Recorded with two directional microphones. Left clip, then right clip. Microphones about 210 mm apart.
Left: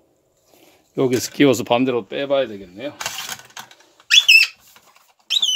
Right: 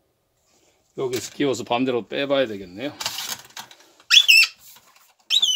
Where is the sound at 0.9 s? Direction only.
45° left (ahead or behind).